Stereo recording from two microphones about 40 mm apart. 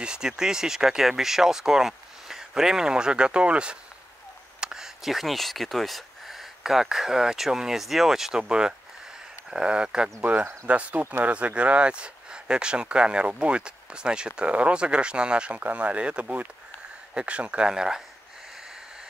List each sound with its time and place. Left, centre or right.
0.0 s speech: centre
4.6 s a sound: centre
5.0 s speech: centre
8.4 s speech: centre
11.0 s speech: right
11.3 s speech: right
17.7 s speech: centre